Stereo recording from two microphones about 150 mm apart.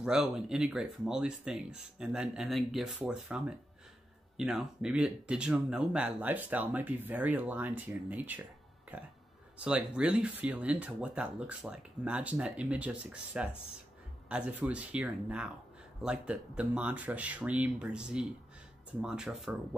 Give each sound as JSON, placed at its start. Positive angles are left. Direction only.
{"t": 0.0, "sound": "speech", "side_deg": -5}
{"t": 9.6, "sound": "speech", "side_deg": -10}